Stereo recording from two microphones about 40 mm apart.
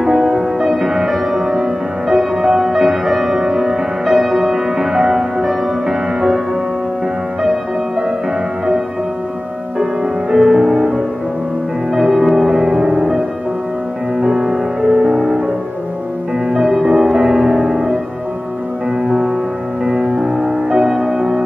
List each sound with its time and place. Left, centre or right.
0.0 s music: centre
10.3 s music: centre
12.0 s music: centre
14.3 s music: centre
16.4 s music: centre
17.5 s music: right
19.8 s music: centre